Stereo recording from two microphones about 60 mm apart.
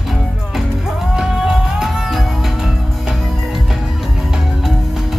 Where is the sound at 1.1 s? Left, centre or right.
Centre.